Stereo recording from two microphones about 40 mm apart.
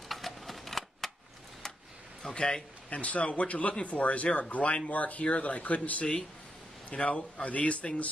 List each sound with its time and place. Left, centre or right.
0.1 s shuffling cards: centre
2.2 s a man's voice: centre
2.9 s a man's voice: left